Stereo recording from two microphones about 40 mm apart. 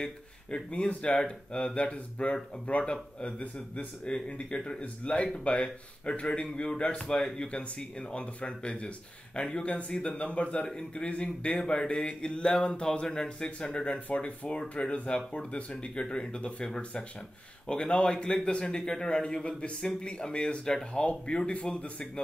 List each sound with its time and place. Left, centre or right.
0.5 s speech: left
7.2 s speech: centre
8.1 s speech: left; by 21.0 s centre
21.0 s a man's voice: left